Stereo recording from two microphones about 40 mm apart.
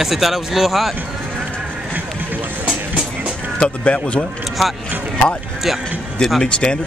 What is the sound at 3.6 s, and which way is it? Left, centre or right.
Speech, left.